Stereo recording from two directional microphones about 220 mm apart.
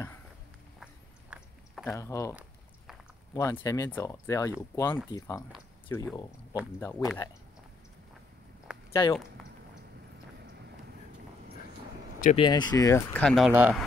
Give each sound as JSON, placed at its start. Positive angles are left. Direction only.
{"t": 1.3, "sound": "a sound", "side_deg": -5}
{"t": 1.9, "sound": "speech", "side_deg": 15}
{"t": 3.3, "sound": "speech", "side_deg": 15}
{"t": 8.9, "sound": "speech", "side_deg": 15}
{"t": 12.4, "sound": "speech", "side_deg": 20}